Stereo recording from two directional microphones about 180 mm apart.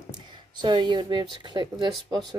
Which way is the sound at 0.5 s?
25° right (ahead or behind).